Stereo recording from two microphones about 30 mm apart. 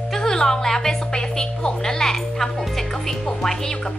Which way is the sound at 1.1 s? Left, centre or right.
Left.